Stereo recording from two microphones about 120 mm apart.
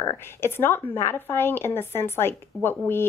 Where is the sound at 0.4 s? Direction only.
20° left (ahead or behind).